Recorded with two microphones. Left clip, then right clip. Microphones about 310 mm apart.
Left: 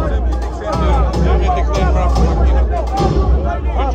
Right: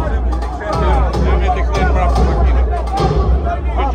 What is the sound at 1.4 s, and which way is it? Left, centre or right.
Music, centre.